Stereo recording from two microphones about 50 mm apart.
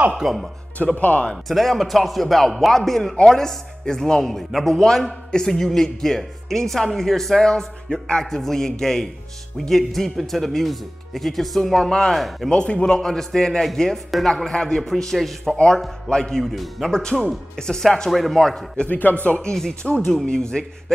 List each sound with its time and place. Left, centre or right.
0.2 s speech: centre
0.9 s speech: left
1.3 s a man's voice: centre
11.9 s a man's voice: centre
12.2 s speech: centre
12.4 s a man's voice: centre
15.5 s a man's voice: centre
16.9 s a man's voice: centre
18.9 s speech: left
19.2 s a man's voice: left